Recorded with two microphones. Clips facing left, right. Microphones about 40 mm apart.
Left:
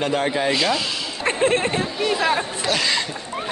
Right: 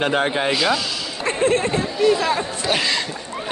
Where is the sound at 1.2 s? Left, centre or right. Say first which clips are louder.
Right 1 dB; left.